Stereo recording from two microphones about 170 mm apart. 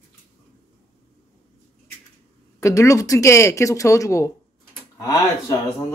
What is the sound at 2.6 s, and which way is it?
Speech, 20° left (ahead or behind).